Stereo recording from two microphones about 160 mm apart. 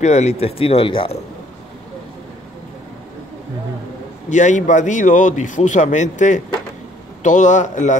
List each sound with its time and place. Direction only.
0.0 s speech: 45° left (ahead or behind)
4.3 s a man's voice: 50° left (ahead or behind)